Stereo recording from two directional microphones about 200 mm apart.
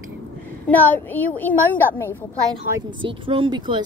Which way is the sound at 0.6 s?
10° left (ahead or behind).